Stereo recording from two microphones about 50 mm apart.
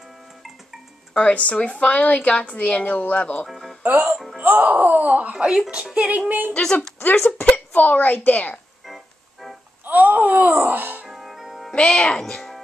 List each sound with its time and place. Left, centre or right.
1.1 s a woman's voice: left
3.4 s speech: centre
3.8 s speech: right
5.3 s music: centre; by 6.5 s right
6.5 s a woman's voice: centre
7.0 s speech: left
8.8 s organ: centre
9.8 s music: right
11.1 s music: centre
11.7 s a woman's voice: left
12.2 s speech: centre